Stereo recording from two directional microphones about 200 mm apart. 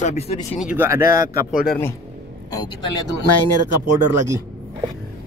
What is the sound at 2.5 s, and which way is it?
Speech, 20° left (ahead or behind).